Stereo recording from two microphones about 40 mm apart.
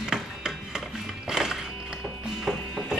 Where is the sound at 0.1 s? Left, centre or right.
Centre.